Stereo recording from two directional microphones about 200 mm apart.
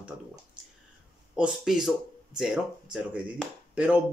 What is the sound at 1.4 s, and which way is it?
Speech, 5° right (ahead or behind).